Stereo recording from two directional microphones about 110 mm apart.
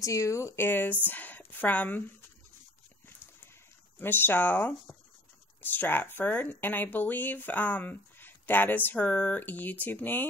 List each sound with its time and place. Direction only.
0.0 s speech: 30° left (ahead or behind)
4.0 s speech: 20° left (ahead or behind)